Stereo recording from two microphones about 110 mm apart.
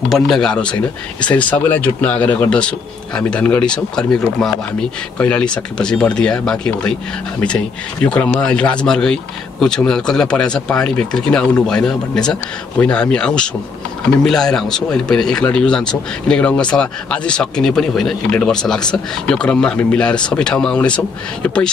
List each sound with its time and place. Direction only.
0.1 s speech: 5° left (ahead or behind)